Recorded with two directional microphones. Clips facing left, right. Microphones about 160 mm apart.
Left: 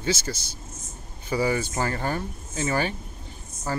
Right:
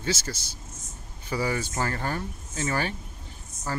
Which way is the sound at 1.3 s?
20° left (ahead or behind).